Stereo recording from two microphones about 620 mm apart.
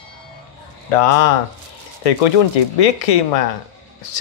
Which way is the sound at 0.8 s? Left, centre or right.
Left.